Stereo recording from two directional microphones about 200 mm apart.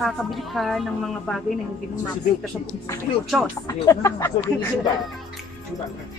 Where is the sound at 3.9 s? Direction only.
15° left (ahead or behind).